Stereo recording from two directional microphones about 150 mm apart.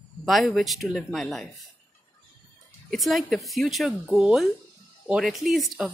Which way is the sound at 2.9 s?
Centre (ahead or behind).